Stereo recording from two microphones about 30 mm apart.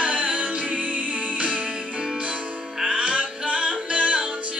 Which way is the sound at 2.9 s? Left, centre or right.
Right.